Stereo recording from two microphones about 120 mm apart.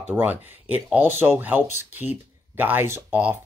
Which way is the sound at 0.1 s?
15° right (ahead or behind).